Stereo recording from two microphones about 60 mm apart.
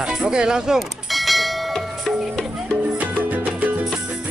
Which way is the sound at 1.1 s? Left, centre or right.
Centre.